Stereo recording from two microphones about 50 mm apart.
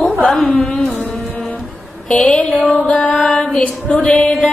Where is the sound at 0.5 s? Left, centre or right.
Left.